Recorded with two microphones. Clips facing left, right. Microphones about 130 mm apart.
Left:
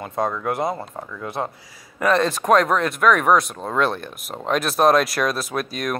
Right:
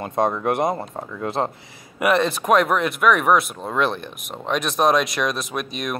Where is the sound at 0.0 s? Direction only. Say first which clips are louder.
Right 3 dB; 20° right (ahead or behind).